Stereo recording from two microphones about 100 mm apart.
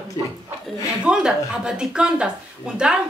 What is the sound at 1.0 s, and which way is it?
Speech, 5° right (ahead or behind).